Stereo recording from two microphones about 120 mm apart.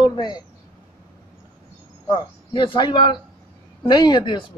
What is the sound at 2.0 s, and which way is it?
A man's voice, 40° left (ahead or behind).